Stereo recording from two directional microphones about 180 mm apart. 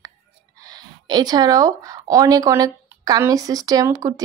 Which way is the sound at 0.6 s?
20° right (ahead or behind).